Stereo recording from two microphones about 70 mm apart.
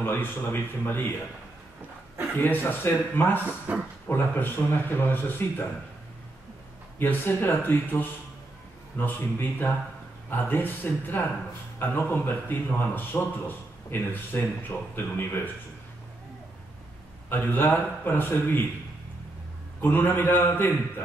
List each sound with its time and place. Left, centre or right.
0.0 s speech: left
2.3 s speech: left
3.7 s speech: right
4.1 s speech: left
7.0 s a man's voice: left
17.3 s a man's voice: left
19.8 s speech: left